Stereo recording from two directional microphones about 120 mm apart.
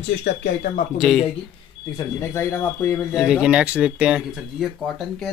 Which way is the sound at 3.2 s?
10° right (ahead or behind).